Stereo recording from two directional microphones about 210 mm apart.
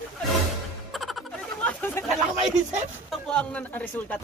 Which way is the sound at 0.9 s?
Centre (ahead or behind).